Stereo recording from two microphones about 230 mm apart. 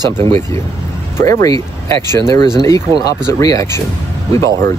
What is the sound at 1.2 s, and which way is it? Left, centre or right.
Speech, centre.